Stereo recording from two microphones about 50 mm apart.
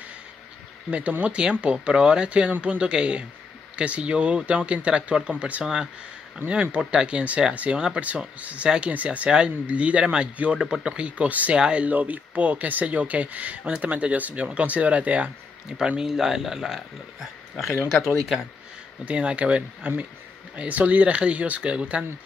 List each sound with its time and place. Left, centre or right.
0.8 s speech: right
8.6 s speech: centre
8.9 s speech: right
10.6 s speech: centre
10.9 s speech: right
11.5 s speech: centre
16.0 s speech: centre
19.0 s speech: right